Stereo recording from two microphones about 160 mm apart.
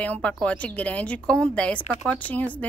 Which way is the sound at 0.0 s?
10° left (ahead or behind).